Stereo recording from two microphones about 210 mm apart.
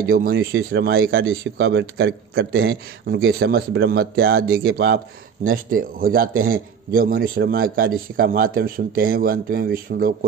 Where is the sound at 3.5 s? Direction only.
50° right (ahead or behind).